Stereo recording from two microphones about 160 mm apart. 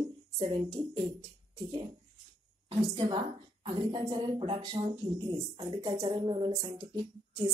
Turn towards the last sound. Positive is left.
turn(degrees=-25)  # may be behind; listen again after turning